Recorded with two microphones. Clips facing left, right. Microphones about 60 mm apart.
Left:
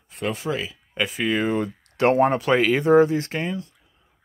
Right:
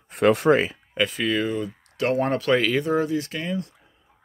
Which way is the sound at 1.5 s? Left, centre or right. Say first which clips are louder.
Left 4 dB; left.